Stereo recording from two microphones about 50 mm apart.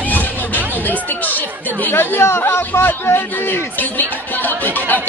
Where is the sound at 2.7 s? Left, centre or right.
Left.